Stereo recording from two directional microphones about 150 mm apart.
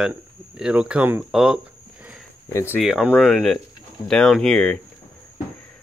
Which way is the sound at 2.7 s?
5° right (ahead or behind).